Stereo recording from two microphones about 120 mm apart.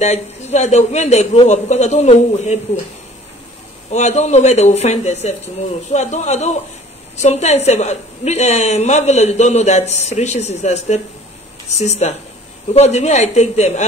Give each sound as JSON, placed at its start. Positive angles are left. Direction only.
{"t": 0.0, "sound": "a woman's voice", "side_deg": 70}
{"t": 3.9, "sound": "a woman's voice", "side_deg": 70}